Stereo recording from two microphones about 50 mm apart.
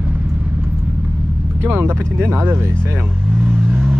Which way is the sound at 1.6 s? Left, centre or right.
Right.